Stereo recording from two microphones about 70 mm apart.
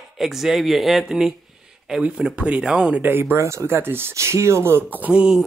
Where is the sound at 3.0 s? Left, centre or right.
Right.